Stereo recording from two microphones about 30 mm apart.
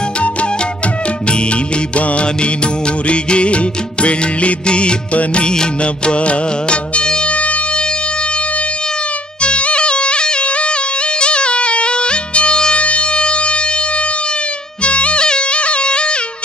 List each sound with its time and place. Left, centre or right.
1.5 s music: left
7.3 s music: left
9.4 s music: left
12.7 s siren: left
14.8 s music: left